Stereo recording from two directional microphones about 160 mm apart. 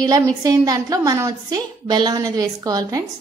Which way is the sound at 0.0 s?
25° right (ahead or behind).